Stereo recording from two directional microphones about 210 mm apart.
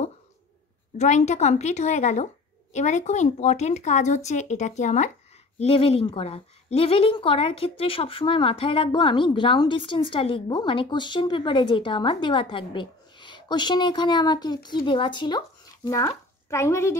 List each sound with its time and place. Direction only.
0.9 s a woman's voice: 35° left (ahead or behind); by 16.9 s 15° left (ahead or behind)